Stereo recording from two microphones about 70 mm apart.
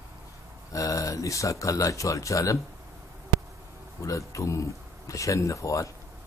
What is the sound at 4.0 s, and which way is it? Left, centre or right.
Speech, left.